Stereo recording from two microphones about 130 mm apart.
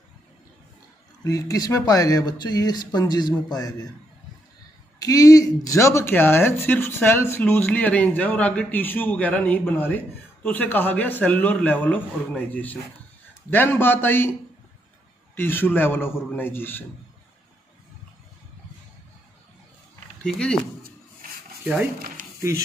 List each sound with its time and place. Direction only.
1.2 s speech: 30° left (ahead or behind)
4.9 s speech: 25° left (ahead or behind)
15.3 s speech: 15° left (ahead or behind)
20.2 s speech: 5° left (ahead or behind)
22.2 s a sound: 90° right